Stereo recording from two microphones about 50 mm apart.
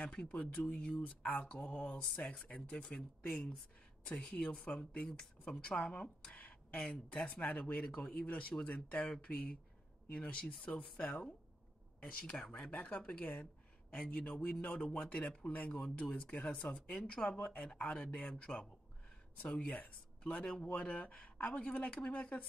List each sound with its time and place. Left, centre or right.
0.0 s speech: centre
4.0 s speech: centre
6.3 s a sound: left
6.8 s speech: centre
7.2 s speech: left
7.8 s speech: left